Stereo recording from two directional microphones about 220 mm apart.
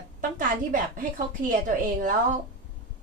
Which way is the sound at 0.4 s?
40° right (ahead or behind).